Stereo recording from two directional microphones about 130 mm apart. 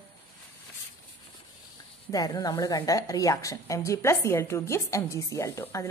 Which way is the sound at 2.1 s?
30° left (ahead or behind).